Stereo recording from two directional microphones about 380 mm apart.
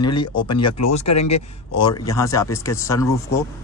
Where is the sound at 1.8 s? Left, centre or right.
Centre.